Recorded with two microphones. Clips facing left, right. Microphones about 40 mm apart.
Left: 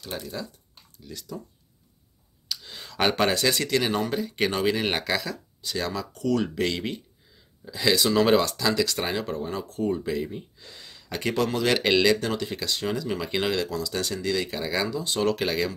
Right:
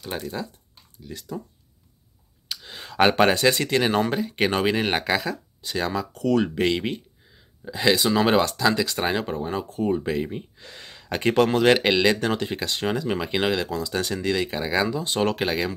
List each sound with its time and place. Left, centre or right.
0.1 s speech: centre
2.4 s speech: right
8.0 s speech: centre; by 11.7 s right
12.0 s speech: right
13.3 s speech: right
15.4 s speech: centre